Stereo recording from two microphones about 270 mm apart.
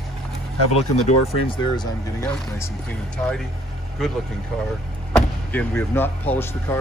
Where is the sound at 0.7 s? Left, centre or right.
Left.